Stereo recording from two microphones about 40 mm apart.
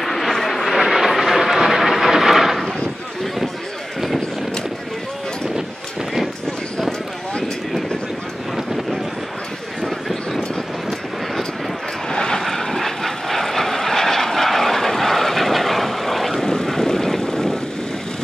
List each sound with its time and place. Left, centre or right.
0.0 s vehicle: centre
9.8 s a sound: centre
12.1 s vehicle: centre
12.4 s vehicle: centre